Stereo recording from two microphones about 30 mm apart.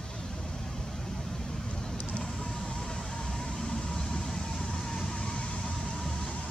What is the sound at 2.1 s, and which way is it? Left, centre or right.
Vehicle, left.